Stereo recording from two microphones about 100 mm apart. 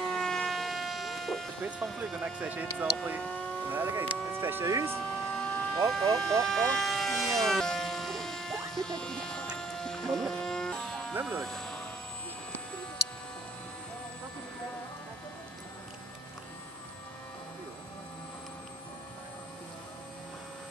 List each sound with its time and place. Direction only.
0.0 s a sound: 5° left (ahead or behind)
2.4 s speech: 15° right (ahead or behind)
4.9 s vehicle: 10° left (ahead or behind)
6.4 s a sound: 5° left (ahead or behind)
8.7 s music: 5° left (ahead or behind)
11.2 s speech: centre (ahead or behind)